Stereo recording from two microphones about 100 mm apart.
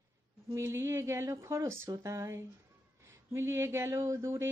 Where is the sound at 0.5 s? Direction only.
30° right (ahead or behind).